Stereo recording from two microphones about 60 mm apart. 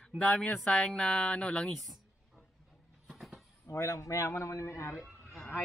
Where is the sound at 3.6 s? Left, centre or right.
Left.